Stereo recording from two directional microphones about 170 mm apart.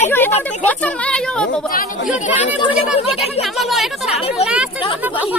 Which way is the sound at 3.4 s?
Centre (ahead or behind).